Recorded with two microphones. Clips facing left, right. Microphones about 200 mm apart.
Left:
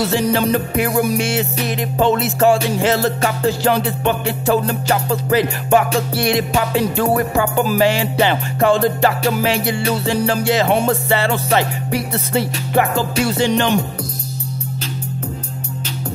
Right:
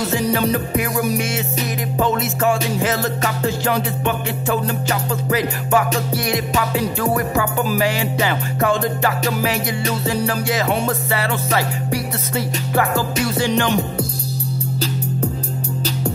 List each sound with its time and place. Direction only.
0.1 s music: 30° left (ahead or behind)